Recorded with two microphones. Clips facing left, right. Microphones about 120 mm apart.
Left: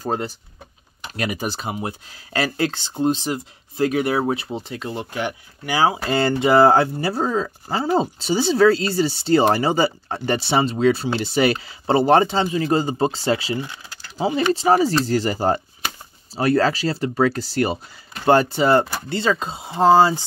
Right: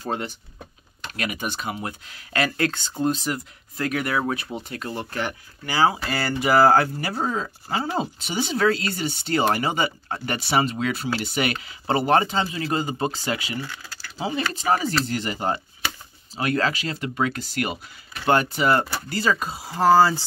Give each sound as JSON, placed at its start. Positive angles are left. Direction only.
{"t": 0.0, "sound": "speech", "side_deg": 35}
{"t": 13.7, "sound": "a sound", "side_deg": 20}
{"t": 14.5, "sound": "speech", "side_deg": 30}